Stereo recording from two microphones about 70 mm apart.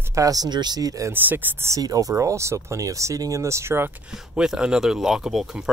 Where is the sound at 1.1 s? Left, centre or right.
Right.